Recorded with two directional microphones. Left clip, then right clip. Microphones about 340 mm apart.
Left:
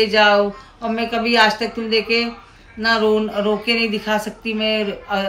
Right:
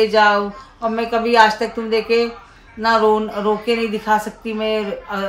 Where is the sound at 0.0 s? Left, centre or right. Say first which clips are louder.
Even; centre.